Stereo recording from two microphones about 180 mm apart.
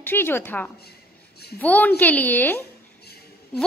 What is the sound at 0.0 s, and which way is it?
A woman's voice, 10° left (ahead or behind).